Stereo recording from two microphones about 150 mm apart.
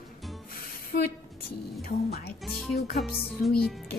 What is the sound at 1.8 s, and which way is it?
Speech, 90° left.